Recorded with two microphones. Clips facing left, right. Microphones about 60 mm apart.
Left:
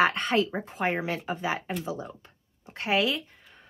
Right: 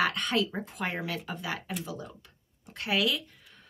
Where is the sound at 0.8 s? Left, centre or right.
Left.